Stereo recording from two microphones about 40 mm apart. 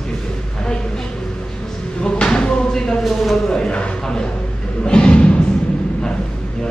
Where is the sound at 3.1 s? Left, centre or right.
Centre.